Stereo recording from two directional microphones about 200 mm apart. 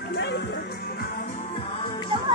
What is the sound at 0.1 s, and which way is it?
Music, 60° left (ahead or behind).